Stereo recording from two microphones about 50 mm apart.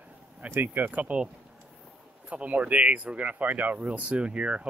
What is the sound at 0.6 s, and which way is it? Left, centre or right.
Speech, right.